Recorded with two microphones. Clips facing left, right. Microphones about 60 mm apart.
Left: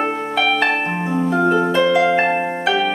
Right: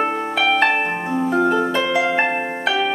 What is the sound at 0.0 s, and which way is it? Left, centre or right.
Harp, centre.